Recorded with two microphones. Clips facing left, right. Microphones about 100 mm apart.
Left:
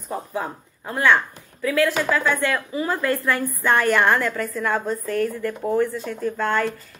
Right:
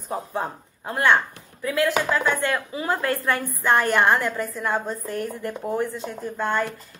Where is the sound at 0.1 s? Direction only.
25° right (ahead or behind).